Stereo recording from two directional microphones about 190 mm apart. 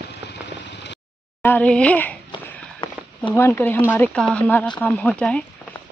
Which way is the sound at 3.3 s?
10° left (ahead or behind).